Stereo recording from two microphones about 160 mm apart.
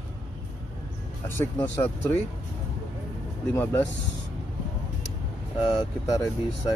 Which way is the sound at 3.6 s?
10° left (ahead or behind).